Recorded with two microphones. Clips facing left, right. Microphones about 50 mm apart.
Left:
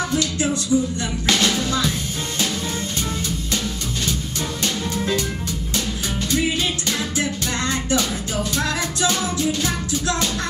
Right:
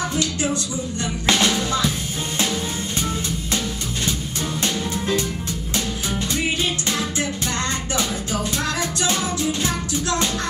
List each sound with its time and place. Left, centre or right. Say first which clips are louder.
1.2 s music: right 1 dB; right
9.0 s music: left 2 dB; right